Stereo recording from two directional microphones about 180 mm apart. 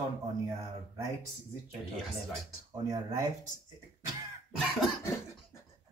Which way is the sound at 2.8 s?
15° right (ahead or behind).